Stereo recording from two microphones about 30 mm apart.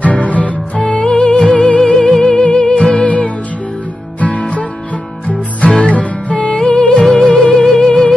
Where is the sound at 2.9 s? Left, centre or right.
Left.